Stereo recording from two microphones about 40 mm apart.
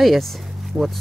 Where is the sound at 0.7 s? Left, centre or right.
Centre.